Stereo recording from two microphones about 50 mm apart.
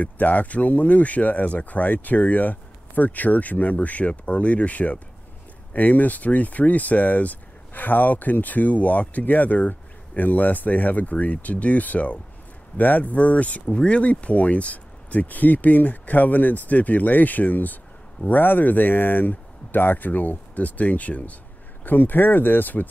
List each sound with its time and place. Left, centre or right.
0.0 s speech: left